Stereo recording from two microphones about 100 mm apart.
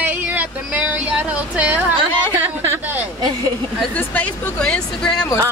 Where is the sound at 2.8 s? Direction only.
15° right (ahead or behind).